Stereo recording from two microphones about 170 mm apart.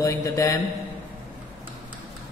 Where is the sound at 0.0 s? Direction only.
20° left (ahead or behind).